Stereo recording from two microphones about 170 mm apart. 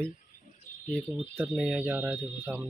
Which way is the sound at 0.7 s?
50° left (ahead or behind).